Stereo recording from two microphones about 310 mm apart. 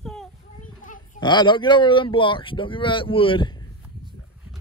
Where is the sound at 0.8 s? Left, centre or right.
Left.